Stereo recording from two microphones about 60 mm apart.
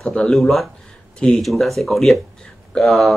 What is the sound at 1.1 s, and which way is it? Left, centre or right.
Speech, centre.